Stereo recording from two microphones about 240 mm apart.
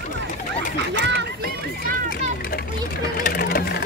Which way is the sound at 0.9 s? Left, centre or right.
Right.